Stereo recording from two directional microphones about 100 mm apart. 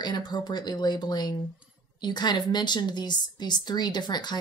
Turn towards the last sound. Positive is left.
turn(degrees=45)  # may be behind; listen again after turning